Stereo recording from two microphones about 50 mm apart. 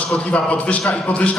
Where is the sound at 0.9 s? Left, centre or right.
Left.